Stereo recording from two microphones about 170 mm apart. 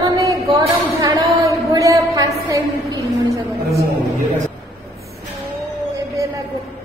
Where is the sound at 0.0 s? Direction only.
20° right (ahead or behind).